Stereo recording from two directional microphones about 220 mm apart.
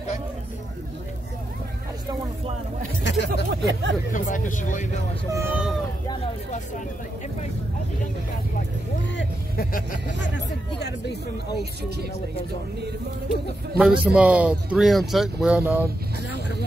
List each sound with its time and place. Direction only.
3.0 s speech: 50° left (ahead or behind)
3.4 s speech: 55° right (ahead or behind)
4.1 s speech: 35° left (ahead or behind)
5.3 s speech: 10° right (ahead or behind)
9.1 s speech: 40° left (ahead or behind)
10.3 s speech: 50° left (ahead or behind)
13.7 s speech: 5° right (ahead or behind)